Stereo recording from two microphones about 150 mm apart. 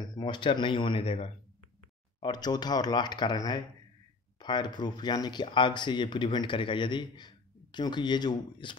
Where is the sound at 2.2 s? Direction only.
25° left (ahead or behind).